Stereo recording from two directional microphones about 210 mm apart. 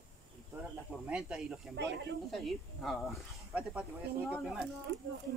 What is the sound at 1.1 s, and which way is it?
Speech, 5° right (ahead or behind).